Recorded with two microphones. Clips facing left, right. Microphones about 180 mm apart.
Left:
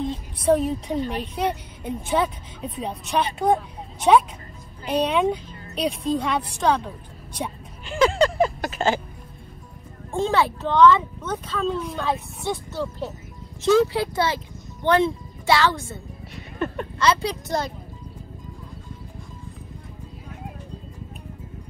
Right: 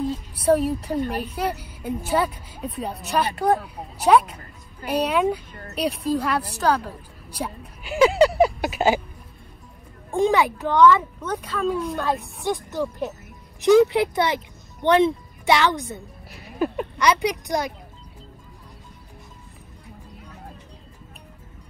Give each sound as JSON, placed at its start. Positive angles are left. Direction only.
{"t": 0.0, "sound": "a sound", "side_deg": -5}
{"t": 1.2, "sound": "a woman's voice", "side_deg": -5}
{"t": 10.1, "sound": "speech", "side_deg": -15}
{"t": 11.8, "sound": "a woman's voice", "side_deg": 0}
{"t": 12.4, "sound": "speech", "side_deg": -15}
{"t": 16.3, "sound": "speech", "side_deg": -5}
{"t": 17.0, "sound": "speech", "side_deg": -15}